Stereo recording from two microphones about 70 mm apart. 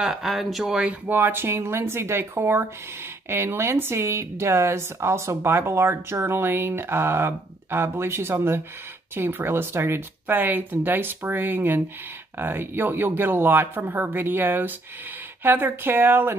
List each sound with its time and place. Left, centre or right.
0.0 s speech: centre
1.0 s speech: right